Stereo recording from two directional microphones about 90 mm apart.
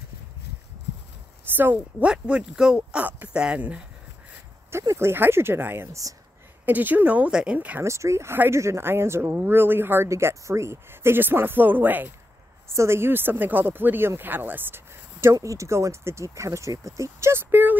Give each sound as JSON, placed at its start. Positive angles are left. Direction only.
{"t": 1.6, "sound": "speech", "side_deg": -20}
{"t": 2.0, "sound": "speech", "side_deg": -10}
{"t": 4.6, "sound": "speech", "side_deg": -30}
{"t": 7.8, "sound": "speech", "side_deg": -35}